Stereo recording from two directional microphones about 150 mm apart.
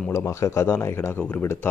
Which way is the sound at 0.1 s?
20° left (ahead or behind).